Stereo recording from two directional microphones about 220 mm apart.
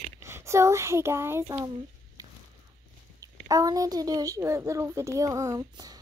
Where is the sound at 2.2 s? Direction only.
15° right (ahead or behind).